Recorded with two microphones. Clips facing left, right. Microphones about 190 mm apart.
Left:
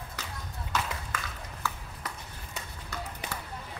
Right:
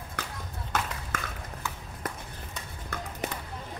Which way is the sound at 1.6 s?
20° right (ahead or behind).